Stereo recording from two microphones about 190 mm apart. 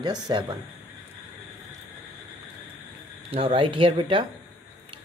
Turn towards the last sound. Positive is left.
turn(degrees=-30)  # may be behind; listen again after turning